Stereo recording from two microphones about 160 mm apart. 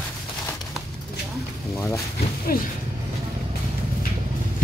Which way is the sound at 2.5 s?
65° left (ahead or behind).